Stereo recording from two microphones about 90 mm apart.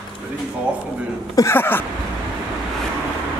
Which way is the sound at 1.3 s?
40° left (ahead or behind).